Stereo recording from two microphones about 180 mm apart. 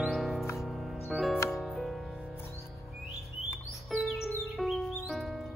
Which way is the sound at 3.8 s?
Centre (ahead or behind).